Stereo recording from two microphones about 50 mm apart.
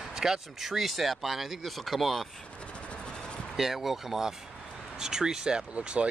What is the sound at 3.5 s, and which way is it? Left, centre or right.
Speech, centre.